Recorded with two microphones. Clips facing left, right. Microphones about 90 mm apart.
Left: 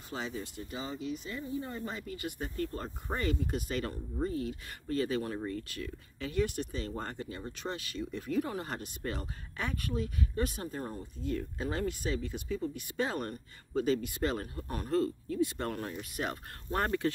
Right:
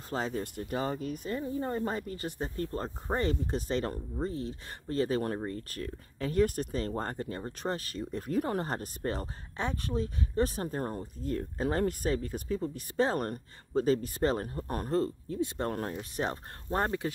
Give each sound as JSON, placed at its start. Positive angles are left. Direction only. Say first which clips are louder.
{"t": 0.1, "sound": "speech", "louder": "right 5 dB", "side_deg": -45}
{"t": 15.7, "sound": "speech", "louder": "right 3 dB", "side_deg": -40}